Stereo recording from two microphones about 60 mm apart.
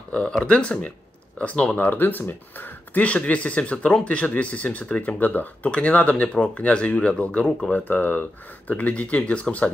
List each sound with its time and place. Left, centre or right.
0.4 s speech: centre
1.8 s speech: left